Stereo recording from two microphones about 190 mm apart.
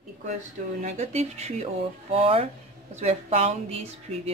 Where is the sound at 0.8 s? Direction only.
35° right (ahead or behind).